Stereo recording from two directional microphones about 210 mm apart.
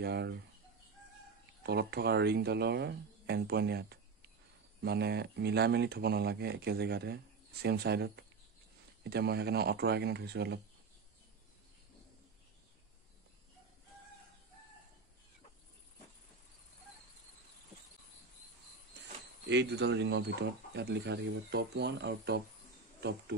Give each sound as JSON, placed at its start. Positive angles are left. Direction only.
{"t": 0.0, "sound": "speech", "side_deg": -55}
{"t": 1.6, "sound": "speech", "side_deg": -50}
{"t": 19.4, "sound": "speech", "side_deg": -55}